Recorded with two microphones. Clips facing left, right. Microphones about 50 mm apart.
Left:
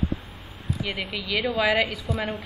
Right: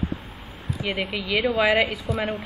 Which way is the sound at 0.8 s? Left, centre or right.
Centre.